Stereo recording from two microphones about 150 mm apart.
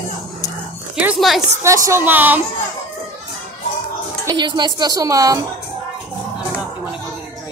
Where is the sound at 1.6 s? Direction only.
20° right (ahead or behind).